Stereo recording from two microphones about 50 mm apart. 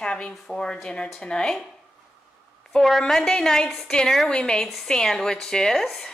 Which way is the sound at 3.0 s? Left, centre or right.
Centre.